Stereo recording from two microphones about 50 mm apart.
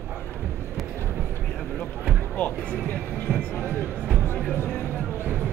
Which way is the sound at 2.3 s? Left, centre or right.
Left.